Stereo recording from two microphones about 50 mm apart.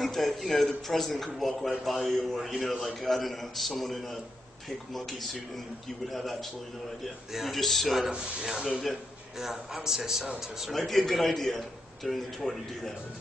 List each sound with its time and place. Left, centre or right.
0.0 s a man's voice: centre
7.3 s a man's voice: centre
8.1 s speech: centre
8.5 s a man's voice: centre
10.7 s a man's voice: centre